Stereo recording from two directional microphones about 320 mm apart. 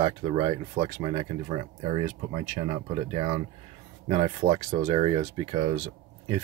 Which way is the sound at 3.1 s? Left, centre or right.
Right.